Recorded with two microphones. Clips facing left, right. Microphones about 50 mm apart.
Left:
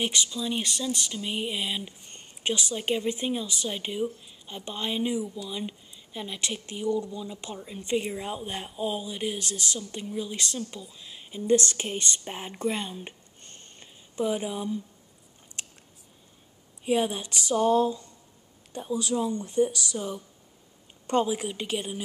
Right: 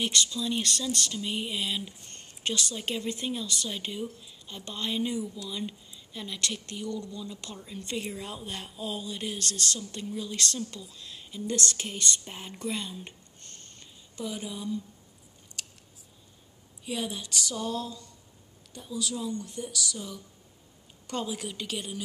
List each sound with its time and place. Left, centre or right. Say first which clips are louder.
0.0 s speech: even; centre
14.2 s a woman's voice: left 7 dB; left
15.6 s scissors: left 2 dB; left
16.8 s speech: left 8 dB; left
17.3 s a woman's voice: left 9 dB; left